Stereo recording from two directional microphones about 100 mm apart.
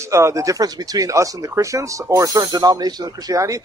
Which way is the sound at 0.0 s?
30° right (ahead or behind).